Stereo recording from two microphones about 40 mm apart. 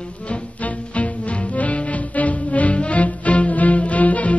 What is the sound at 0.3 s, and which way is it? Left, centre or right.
Music, left.